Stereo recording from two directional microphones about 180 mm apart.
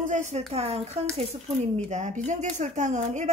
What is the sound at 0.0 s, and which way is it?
A woman's voice, 45° right (ahead or behind).